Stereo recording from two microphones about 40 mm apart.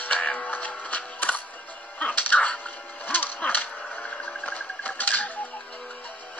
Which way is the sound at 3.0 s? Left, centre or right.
Left.